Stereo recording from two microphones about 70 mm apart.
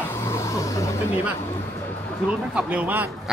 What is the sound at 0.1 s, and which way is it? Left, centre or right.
Vehicle, left.